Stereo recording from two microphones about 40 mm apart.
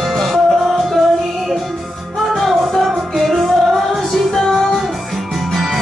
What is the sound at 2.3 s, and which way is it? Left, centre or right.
Music, centre.